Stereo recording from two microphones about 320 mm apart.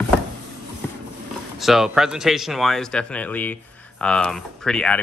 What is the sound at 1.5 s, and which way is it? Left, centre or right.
Speech, centre.